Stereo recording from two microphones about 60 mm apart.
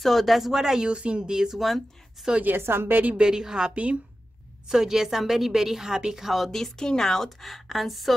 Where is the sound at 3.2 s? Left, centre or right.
Centre.